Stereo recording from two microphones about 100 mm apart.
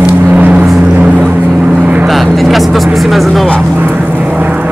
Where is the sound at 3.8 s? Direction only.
15° right (ahead or behind).